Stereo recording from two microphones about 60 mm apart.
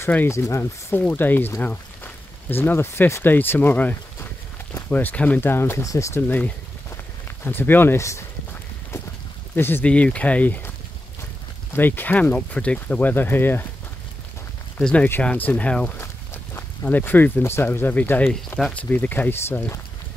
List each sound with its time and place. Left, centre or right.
0.3 s speech: left
0.9 s speech: left
5.4 s speech: left
5.9 s speech: left
6.1 s speech: left
8.0 s speech: left
9.6 s speech: left
9.8 s speech: left
11.7 s speech: left
12.4 s speech: centre; by 13.7 s left
14.8 s speech: centre
15.3 s speech: left